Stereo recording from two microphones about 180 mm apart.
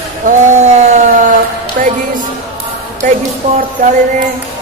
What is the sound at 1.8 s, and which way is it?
Speech, 50° right (ahead or behind).